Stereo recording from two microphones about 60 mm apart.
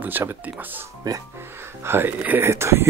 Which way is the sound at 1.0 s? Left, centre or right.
Right.